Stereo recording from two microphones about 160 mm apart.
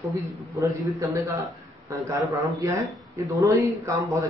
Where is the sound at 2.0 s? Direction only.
20° right (ahead or behind).